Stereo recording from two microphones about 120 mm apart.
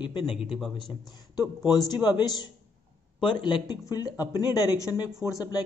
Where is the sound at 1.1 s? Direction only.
35° left (ahead or behind).